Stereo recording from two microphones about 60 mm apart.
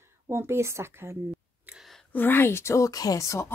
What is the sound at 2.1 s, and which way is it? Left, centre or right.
Speech, left.